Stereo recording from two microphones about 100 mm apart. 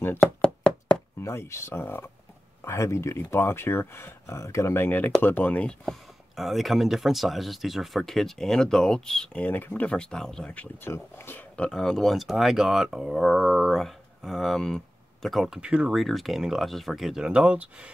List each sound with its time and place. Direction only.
0.4 s knock: 5° left (ahead or behind)
1.2 s speech: 25° left (ahead or behind); by 5.9 s 10° left (ahead or behind)
6.3 s speech: centre (ahead or behind)